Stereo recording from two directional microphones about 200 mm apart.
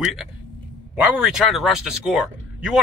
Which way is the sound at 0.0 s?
Centre (ahead or behind).